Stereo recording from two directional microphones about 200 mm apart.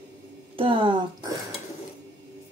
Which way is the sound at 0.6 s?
25° right (ahead or behind).